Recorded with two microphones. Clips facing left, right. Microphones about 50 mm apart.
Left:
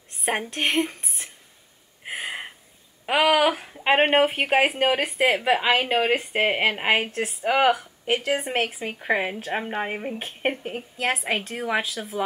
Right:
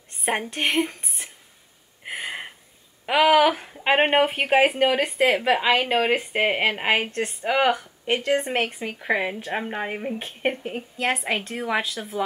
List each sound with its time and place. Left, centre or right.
0.1 s a woman's voice: centre
2.0 s a sound: centre
3.1 s speech: centre
4.7 s speech: centre
5.0 s speech: centre